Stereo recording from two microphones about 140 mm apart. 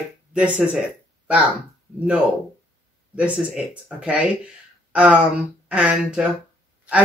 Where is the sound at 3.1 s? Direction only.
10° right (ahead or behind).